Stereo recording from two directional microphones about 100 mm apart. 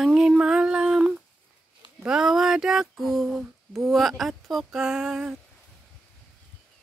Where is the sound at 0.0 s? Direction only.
5° right (ahead or behind).